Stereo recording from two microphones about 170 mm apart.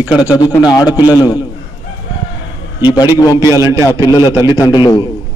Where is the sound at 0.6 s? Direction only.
25° left (ahead or behind).